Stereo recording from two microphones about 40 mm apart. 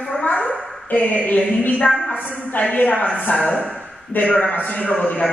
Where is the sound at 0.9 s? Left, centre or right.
Left.